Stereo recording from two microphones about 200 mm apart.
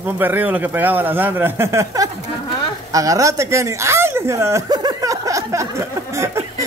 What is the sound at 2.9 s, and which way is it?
Chuckle, 15° right (ahead or behind).